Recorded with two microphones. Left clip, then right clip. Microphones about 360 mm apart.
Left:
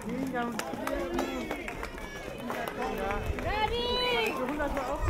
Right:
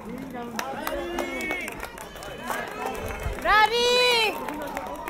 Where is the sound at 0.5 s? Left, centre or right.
Centre.